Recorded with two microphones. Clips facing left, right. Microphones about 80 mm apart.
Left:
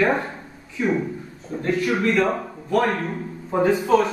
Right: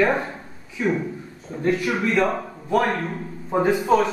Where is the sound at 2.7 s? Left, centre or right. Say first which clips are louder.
Even; centre.